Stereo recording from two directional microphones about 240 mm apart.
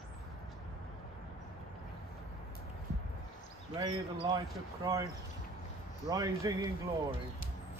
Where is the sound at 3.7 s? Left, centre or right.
Centre.